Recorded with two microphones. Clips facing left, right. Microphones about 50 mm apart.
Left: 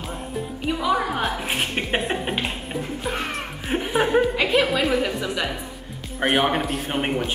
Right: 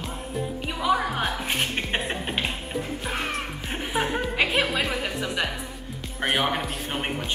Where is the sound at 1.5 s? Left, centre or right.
Centre.